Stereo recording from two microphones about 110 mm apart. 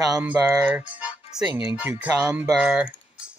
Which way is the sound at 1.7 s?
10° right (ahead or behind).